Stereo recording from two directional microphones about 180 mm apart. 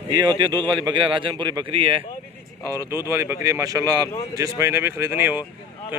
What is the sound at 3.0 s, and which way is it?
A man's voice, 15° right (ahead or behind).